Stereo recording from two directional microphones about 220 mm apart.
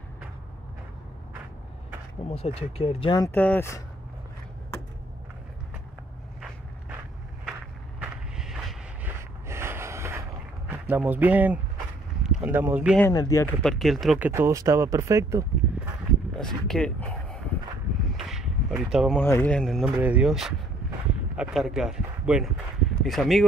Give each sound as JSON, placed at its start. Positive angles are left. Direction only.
{"t": 2.2, "sound": "speech", "side_deg": 25}
{"t": 8.0, "sound": "vehicle", "side_deg": 0}
{"t": 9.5, "sound": "snort", "side_deg": -10}
{"t": 10.7, "sound": "speech", "side_deg": -10}
{"t": 13.0, "sound": "speech", "side_deg": 15}
{"t": 13.6, "sound": "speech", "side_deg": 0}
{"t": 16.3, "sound": "speech", "side_deg": 5}